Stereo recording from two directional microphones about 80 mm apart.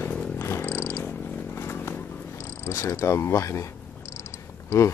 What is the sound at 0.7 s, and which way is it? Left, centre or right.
Dog, left.